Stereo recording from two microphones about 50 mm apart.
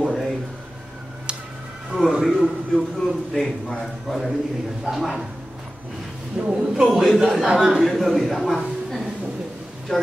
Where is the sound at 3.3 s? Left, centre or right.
Centre.